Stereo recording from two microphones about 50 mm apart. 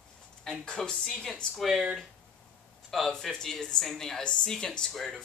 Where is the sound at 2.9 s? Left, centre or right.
Centre.